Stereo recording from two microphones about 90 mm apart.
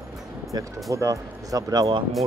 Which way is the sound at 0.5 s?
50° right (ahead or behind).